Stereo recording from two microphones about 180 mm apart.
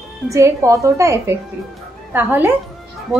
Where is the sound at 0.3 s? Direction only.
15° right (ahead or behind).